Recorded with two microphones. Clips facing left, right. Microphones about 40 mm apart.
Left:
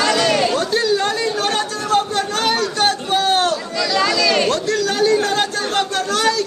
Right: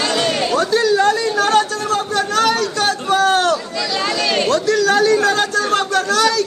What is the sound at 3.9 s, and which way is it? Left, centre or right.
Chatter, left.